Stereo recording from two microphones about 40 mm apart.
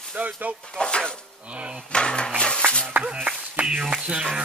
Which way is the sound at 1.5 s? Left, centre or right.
Right.